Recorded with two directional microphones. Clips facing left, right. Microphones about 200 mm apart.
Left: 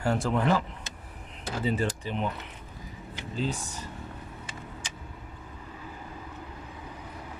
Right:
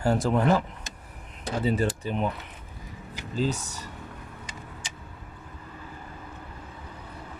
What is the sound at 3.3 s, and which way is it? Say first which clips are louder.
Speech: right 4 dB; 40° right (ahead or behind).